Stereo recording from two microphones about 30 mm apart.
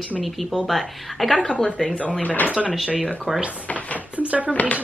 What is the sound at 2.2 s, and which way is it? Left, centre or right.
Speech, left.